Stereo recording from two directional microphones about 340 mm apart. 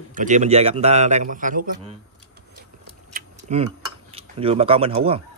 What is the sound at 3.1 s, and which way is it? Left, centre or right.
Tick-tock, right.